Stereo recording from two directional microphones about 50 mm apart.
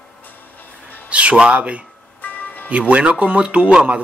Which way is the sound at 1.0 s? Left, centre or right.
Right.